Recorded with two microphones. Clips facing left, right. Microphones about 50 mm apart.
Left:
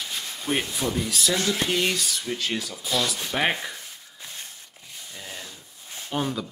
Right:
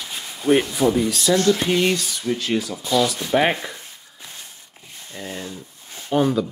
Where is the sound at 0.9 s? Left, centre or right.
Centre.